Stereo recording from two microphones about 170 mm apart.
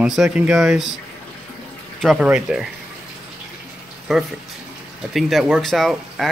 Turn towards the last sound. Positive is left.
turn(degrees=0)  # may be behind; listen again after turning